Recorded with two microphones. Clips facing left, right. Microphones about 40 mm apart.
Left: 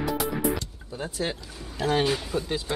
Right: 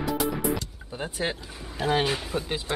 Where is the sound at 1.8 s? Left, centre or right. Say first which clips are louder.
Left 1 dB; centre.